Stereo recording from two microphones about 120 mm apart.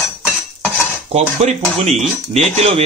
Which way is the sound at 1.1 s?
65° right (ahead or behind).